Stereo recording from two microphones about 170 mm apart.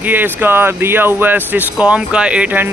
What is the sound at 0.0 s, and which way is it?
Speech, 10° right (ahead or behind).